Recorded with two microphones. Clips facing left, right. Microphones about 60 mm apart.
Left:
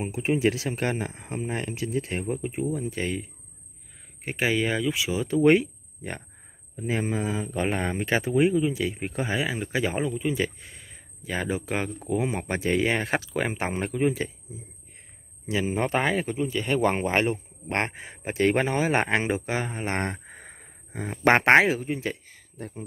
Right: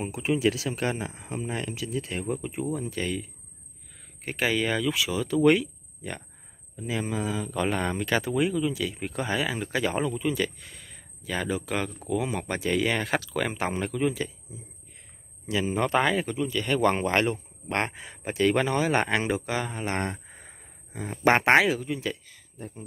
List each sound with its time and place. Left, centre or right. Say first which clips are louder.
0.0 s speech: left 1 dB; left
4.2 s speech: left 1 dB; centre
15.4 s speech: even; left
21.5 s speech: left 2 dB; left
22.6 s speech: left 3 dB; left